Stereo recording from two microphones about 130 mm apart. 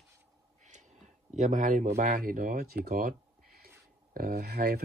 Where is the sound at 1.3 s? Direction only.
80° right.